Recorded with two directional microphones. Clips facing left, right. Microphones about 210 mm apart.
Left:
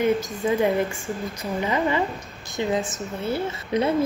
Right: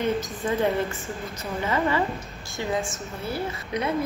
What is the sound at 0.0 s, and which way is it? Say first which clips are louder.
A woman's voice: left 4 dB; 10° left (ahead or behind).